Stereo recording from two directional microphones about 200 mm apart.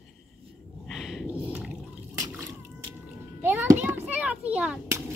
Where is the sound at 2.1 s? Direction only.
20° right (ahead or behind).